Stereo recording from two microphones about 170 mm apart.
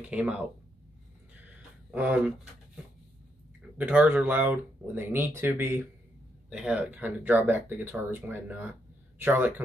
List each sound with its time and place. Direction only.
0.0 s speech: 10° right (ahead or behind)
1.9 s speech: 10° right (ahead or behind)
6.5 s speech: 5° right (ahead or behind)